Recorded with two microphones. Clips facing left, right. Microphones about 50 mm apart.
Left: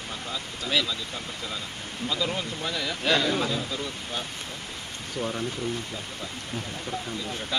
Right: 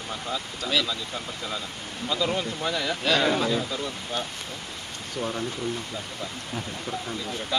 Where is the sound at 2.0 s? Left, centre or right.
Centre.